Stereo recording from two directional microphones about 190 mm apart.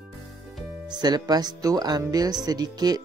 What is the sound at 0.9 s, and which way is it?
Speech, 20° right (ahead or behind).